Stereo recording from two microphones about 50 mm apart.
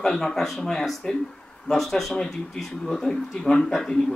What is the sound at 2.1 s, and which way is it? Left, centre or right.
A man's voice, centre.